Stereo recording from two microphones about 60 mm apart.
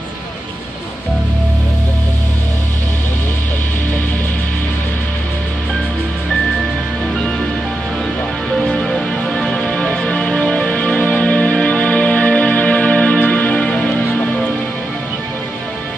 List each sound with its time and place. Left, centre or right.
8.5 s music: centre